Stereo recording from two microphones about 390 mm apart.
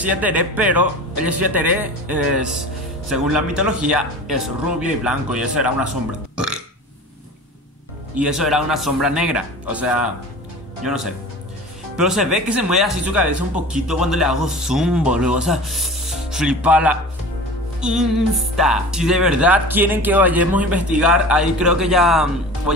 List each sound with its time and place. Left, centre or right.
0.0 s speech: centre
1.2 s speech: left
1.5 s speech: centre
6.3 s burping: centre
8.2 s speech: centre